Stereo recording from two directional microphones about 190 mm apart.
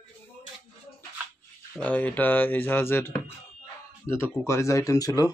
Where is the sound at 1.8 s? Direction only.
10° left (ahead or behind).